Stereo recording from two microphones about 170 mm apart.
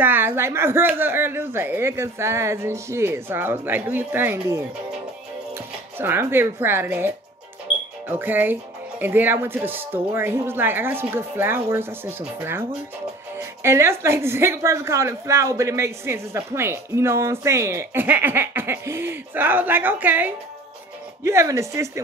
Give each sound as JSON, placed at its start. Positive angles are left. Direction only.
{"t": 0.0, "sound": "a woman's voice", "side_deg": -10}
{"t": 5.9, "sound": "a woman's voice", "side_deg": -15}
{"t": 8.2, "sound": "a woman's voice", "side_deg": -10}